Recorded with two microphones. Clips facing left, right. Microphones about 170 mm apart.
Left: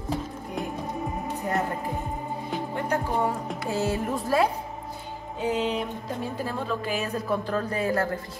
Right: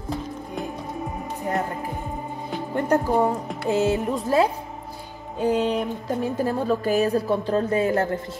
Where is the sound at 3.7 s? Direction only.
20° right (ahead or behind).